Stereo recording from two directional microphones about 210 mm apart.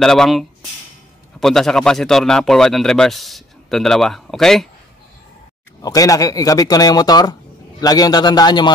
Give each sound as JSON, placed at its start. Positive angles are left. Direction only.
{"t": 0.0, "sound": "speech", "side_deg": 0}
{"t": 5.8, "sound": "a man's voice", "side_deg": 15}